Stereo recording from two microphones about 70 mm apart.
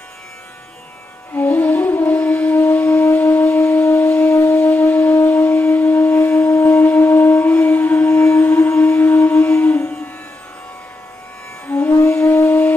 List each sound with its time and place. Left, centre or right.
1.3 s music: left
2.1 s wind instrument: centre
3.5 s shofar: left
4.3 s wind instrument: left
8.4 s music: left
11.7 s music: left
12.2 s a sound: left